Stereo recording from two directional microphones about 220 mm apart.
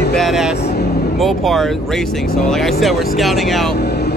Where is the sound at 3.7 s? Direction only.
45° left (ahead or behind).